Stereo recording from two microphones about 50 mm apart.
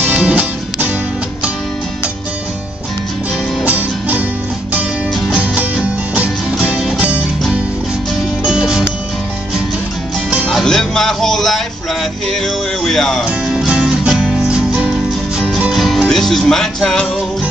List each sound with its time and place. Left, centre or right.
0.1 s music: centre
3.6 s music: right
5.4 s music: right
8.5 s music: centre
10.5 s music: centre
13.7 s music: centre
15.7 s music: centre